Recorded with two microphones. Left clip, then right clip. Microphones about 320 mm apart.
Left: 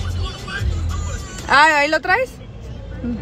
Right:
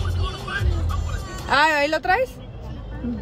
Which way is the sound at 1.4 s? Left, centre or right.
Centre.